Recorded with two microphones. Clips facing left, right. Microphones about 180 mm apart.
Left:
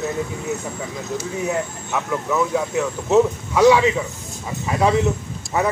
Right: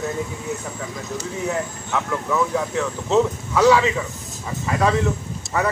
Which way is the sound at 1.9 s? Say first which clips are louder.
Even; 10° left (ahead or behind).